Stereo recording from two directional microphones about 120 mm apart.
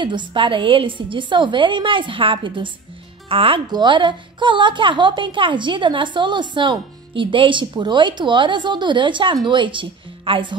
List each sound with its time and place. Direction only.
0.0 s a woman's voice: 40° right (ahead or behind)